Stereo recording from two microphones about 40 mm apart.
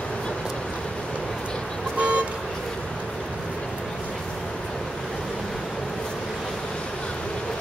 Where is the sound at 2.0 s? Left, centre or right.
Right.